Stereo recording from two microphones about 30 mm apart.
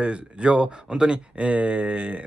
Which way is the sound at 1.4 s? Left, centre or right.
Right.